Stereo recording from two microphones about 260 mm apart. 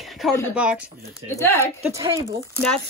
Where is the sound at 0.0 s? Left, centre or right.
Centre.